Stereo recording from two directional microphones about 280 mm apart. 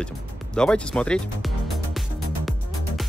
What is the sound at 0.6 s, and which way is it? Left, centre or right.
Music, centre.